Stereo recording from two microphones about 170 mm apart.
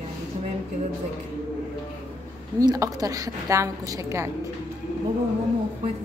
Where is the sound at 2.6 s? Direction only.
20° right (ahead or behind).